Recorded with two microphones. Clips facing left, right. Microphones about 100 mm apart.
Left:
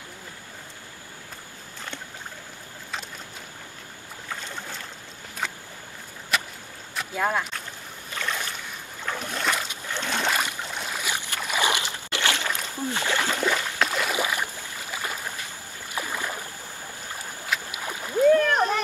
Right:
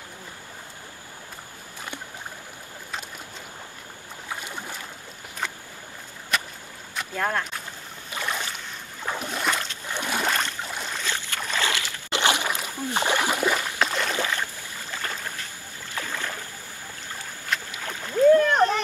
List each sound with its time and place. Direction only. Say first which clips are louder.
4.3 s boat: right 1 dB; 15° right (ahead or behind)
6.3 s boat: even; centre (ahead or behind)
7.0 s speech: left 1 dB; 5° left (ahead or behind)
8.1 s boat: right 1 dB; 15° right (ahead or behind)
9.0 s a sound: right 1 dB; 15° right (ahead or behind)
10.7 s boat: even; 5° left (ahead or behind)
12.1 s a sound: right 4 dB; 20° right (ahead or behind)
13.7 s boat: even; 5° left (ahead or behind)
17.6 s rowboat: left 1 dB; 15° left (ahead or behind)
18.5 s a sound: right 2 dB; 5° left (ahead or behind)